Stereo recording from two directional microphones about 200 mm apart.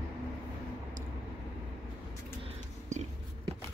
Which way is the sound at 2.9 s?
35° right (ahead or behind).